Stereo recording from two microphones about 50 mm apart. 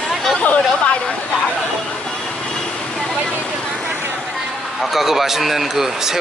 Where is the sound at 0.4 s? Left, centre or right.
Left.